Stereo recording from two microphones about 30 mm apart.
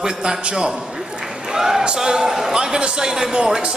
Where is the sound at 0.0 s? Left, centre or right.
Right.